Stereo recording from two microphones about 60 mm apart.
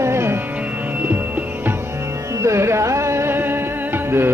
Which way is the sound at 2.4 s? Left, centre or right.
Right.